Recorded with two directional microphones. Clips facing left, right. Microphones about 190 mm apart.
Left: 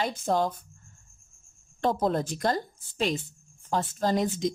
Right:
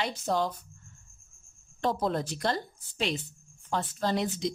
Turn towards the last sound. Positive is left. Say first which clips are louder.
# left 3 dB
turn(degrees=45)  # may be behind; listen again after turning